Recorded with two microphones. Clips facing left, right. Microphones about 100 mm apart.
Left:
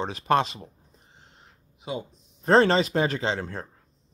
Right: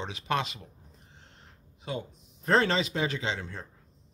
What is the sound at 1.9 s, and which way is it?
Speech, 10° left (ahead or behind).